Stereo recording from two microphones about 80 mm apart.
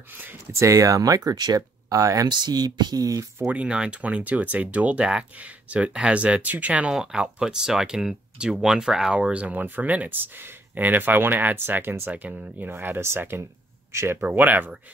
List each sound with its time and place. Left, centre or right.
0.5 s speech: right
2.2 s speech: right
3.5 s speech: centre